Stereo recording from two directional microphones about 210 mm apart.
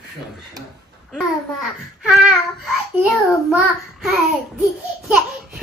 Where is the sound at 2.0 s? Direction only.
Centre (ahead or behind).